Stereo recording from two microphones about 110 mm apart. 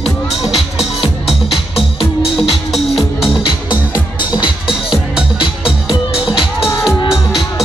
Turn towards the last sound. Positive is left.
turn(degrees=-5)  # may be behind; listen again after turning